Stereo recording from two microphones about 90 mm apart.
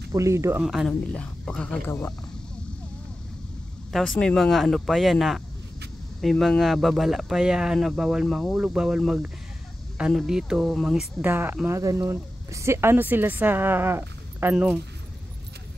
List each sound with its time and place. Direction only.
0.1 s speech: 35° right (ahead or behind)
0.6 s speech: 5° right (ahead or behind)
1.1 s speech: 10° left (ahead or behind)
1.9 s speech: 20° left (ahead or behind)
3.9 s speech: 5° left (ahead or behind)
11.1 s a woman's voice: 25° right (ahead or behind)